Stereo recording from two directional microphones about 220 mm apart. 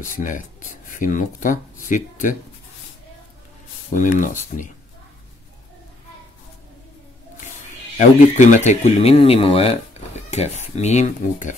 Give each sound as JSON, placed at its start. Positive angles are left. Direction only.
{"t": 0.0, "sound": "speech", "side_deg": 35}
{"t": 3.9, "sound": "speech", "side_deg": 35}
{"t": 8.0, "sound": "speech", "side_deg": 35}